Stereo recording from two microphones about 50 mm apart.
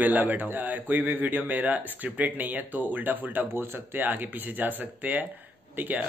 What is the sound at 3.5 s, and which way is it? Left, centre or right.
Speech, right.